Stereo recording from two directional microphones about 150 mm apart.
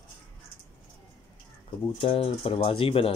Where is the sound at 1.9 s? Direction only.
40° left (ahead or behind).